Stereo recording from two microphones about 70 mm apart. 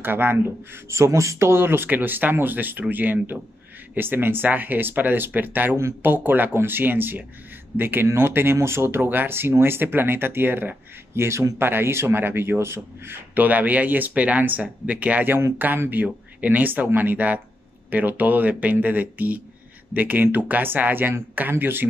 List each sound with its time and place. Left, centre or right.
0.0 s speech: right
0.8 s speech: right
11.1 s speech: right